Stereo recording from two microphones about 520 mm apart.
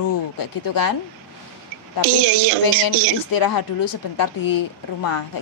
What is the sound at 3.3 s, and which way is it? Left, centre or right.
Speech, left.